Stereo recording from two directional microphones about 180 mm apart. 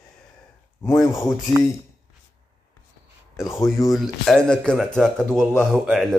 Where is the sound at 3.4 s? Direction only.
15° left (ahead or behind).